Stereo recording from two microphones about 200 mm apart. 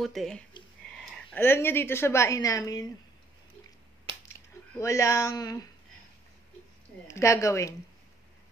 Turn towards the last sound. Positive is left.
turn(degrees=15)  # may be behind; listen again after turning